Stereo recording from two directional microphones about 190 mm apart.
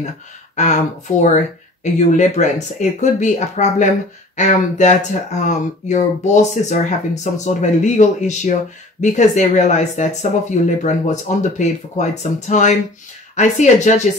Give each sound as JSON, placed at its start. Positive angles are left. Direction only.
{"t": 0.6, "sound": "speech", "side_deg": 40}